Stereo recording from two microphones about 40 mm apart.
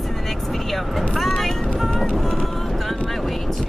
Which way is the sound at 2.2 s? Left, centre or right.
Centre.